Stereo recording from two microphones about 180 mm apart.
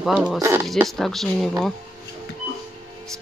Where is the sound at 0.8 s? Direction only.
Centre (ahead or behind).